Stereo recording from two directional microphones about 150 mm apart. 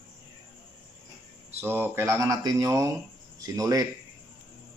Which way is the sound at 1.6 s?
15° right (ahead or behind).